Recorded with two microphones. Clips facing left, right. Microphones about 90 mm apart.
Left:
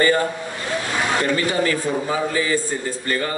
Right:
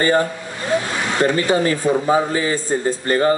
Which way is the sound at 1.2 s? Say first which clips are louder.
Right 8 dB; 30° right (ahead or behind).